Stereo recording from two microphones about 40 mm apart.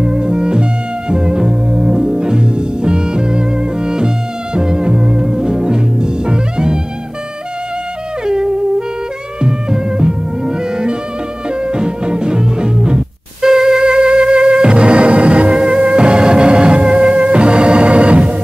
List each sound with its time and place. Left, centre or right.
0.0 s music: right
8.3 s music: centre